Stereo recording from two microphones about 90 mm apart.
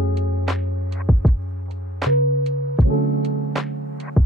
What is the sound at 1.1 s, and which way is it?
Music, 5° left (ahead or behind).